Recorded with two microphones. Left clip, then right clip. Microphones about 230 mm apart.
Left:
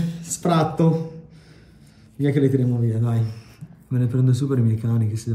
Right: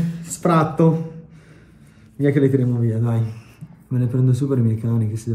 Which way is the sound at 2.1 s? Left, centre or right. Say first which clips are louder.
Right 3 dB; centre.